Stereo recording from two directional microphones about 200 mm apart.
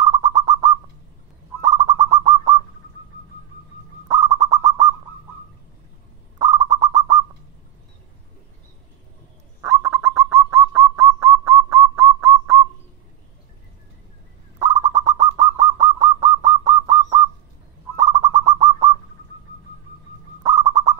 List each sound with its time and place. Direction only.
0.0 s bird: 15° right (ahead or behind)
4.1 s bird: 15° right (ahead or behind)
6.3 s bird: 15° right (ahead or behind)
9.6 s bird: 15° right (ahead or behind)
14.6 s bird: 15° right (ahead or behind)
20.4 s owl: 15° right (ahead or behind)